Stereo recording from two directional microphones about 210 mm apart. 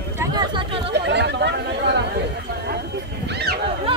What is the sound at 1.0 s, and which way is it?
Chatter, 55° right (ahead or behind).